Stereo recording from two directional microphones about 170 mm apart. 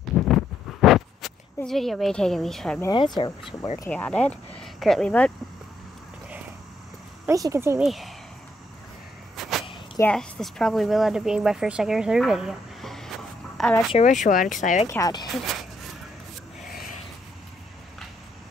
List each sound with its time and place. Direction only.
0.2 s a sound: centre (ahead or behind)
2.9 s speech: 25° left (ahead or behind)
3.9 s speech: 5° left (ahead or behind)
7.2 s speech: 20° right (ahead or behind)
7.8 s speech: centre (ahead or behind)
9.4 s a sound: centre (ahead or behind)
9.9 s speech: 5° left (ahead or behind)
13.9 s speech: 45° left (ahead or behind)
14.9 s speech: 20° left (ahead or behind)
16.6 s a sound: 55° left (ahead or behind)